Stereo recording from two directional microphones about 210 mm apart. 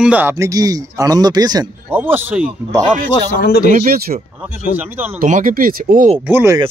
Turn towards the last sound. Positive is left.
turn(degrees=-10)  # may be behind; listen again after turning